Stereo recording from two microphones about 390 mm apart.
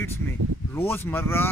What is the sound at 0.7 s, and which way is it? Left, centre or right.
Speech, centre.